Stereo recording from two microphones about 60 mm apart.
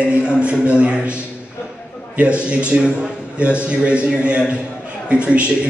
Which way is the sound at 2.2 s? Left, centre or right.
Centre.